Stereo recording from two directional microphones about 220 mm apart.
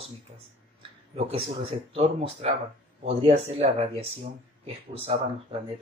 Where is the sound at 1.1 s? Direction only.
25° right (ahead or behind).